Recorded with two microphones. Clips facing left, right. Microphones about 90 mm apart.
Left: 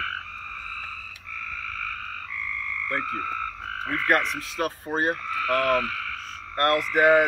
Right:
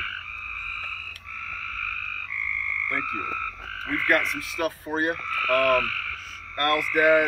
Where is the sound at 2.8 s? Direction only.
35° left (ahead or behind).